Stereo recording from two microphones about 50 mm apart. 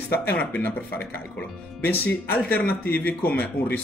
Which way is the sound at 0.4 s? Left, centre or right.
Left.